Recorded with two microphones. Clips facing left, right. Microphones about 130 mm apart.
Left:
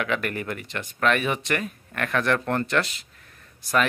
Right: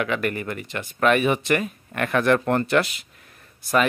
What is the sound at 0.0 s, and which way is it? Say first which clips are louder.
Speech: right 2 dB; centre (ahead or behind).